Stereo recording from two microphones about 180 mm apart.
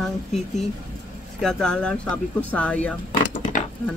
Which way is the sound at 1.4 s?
5° left (ahead or behind).